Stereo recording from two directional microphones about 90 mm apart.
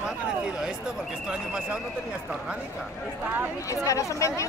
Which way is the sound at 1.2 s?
10° right (ahead or behind).